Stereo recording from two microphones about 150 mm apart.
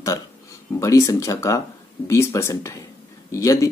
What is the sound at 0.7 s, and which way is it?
Speech, 20° left (ahead or behind).